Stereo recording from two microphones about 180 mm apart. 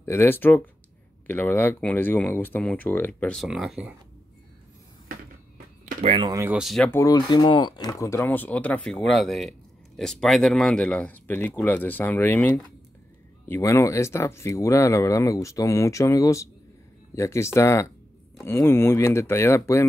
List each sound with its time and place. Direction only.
0.0 s speech: 10° left (ahead or behind); by 3.9 s 5° right (ahead or behind)
6.0 s speech: 25° right (ahead or behind)
6.4 s speech: 5° right (ahead or behind)
6.9 s speech: 15° left (ahead or behind)